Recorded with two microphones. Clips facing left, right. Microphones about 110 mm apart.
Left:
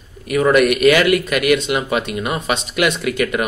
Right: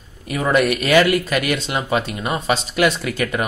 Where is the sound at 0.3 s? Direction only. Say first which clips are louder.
Left 4 dB; 30° right (ahead or behind).